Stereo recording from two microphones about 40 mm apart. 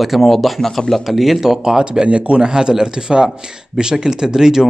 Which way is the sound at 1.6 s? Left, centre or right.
Right.